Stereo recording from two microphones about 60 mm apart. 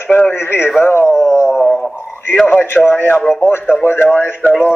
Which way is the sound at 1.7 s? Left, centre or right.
Centre.